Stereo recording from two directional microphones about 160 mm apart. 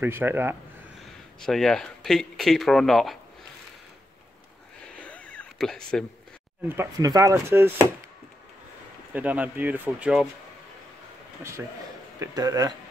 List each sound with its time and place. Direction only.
0.0 s speech: 15° right (ahead or behind)
1.4 s speech: 5° left (ahead or behind)
4.9 s cat: 10° left (ahead or behind)
6.8 s speech: 20° right (ahead or behind)
9.1 s speech: 10° right (ahead or behind)
12.2 s speech: 20° right (ahead or behind)